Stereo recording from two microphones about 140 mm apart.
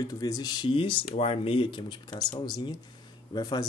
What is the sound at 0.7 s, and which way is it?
Speech, 40° left (ahead or behind).